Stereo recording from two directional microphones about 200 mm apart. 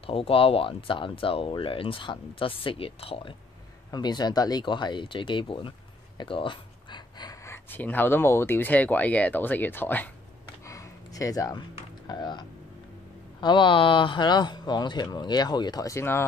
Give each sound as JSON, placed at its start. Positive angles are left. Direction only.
{"t": 0.0, "sound": "speech", "side_deg": 30}
{"t": 10.6, "sound": "a sound", "side_deg": 15}
{"t": 12.1, "sound": "speech", "side_deg": 20}